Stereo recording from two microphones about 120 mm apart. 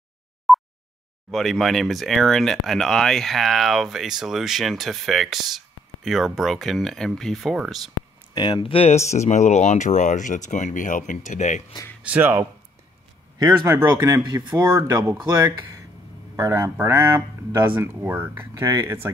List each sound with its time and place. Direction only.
0.5 s a sound: centre (ahead or behind)
1.3 s speech: centre (ahead or behind)
8.4 s speech: 40° left (ahead or behind); by 11.6 s 85° left
12.0 s speech: 15° right (ahead or behind)
14.2 s speech: 40° right (ahead or behind)
16.3 s speech: 25° right (ahead or behind)